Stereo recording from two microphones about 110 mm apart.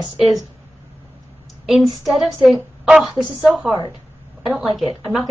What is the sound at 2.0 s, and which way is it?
A woman's voice, centre (ahead or behind).